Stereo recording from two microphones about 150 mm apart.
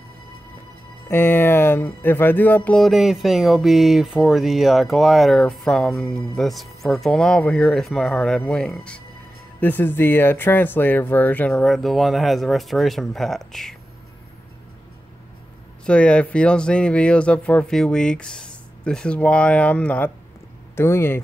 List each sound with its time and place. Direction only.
1.0 s speech: 15° left (ahead or behind)
11.5 s speech: centre (ahead or behind)
15.8 s speech: 5° left (ahead or behind)